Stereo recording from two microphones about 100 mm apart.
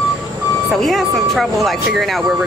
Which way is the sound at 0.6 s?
Centre (ahead or behind).